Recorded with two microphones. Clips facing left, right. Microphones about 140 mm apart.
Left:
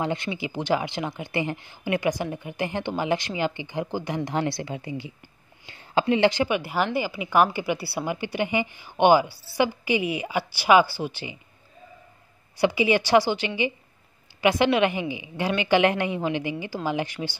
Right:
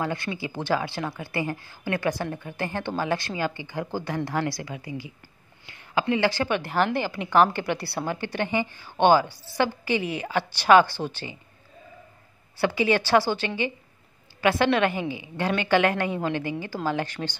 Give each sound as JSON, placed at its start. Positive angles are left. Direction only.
{"t": 0.0, "sound": "a woman's voice", "side_deg": 20}
{"t": 12.5, "sound": "a woman's voice", "side_deg": 15}